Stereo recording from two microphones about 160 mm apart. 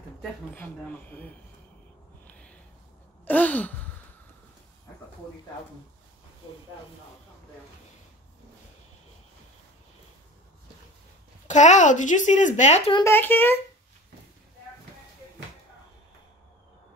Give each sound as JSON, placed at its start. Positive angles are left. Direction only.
{"t": 0.6, "sound": "speech", "side_deg": 10}
{"t": 2.2, "sound": "a sound", "side_deg": 5}
{"t": 11.4, "sound": "speech", "side_deg": 50}
{"t": 13.0, "sound": "speech", "side_deg": 15}